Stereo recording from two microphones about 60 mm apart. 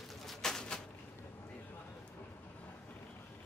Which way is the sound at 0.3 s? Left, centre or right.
Centre.